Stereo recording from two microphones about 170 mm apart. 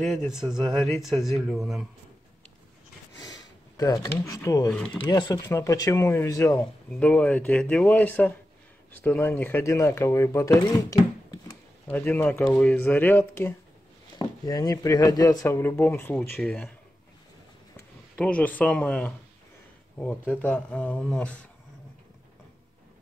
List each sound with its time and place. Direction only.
0.3 s speech: 5° right (ahead or behind)
3.7 s speech: 20° left (ahead or behind)
6.9 s speech: 5° left (ahead or behind)
14.1 s speech: 25° left (ahead or behind)
17.7 s speech: 10° left (ahead or behind)